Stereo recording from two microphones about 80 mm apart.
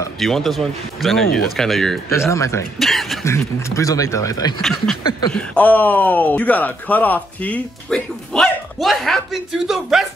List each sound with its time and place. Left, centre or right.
0.2 s speech: centre
2.0 s speech: left
2.8 s a sound: centre
3.3 s speech: left
4.6 s speech: centre
5.3 s speech: centre
7.9 s a sound: centre
9.5 s speech: centre